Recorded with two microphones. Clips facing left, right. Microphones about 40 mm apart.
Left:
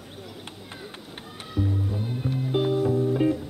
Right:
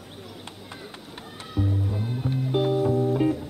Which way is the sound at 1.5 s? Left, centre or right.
Centre.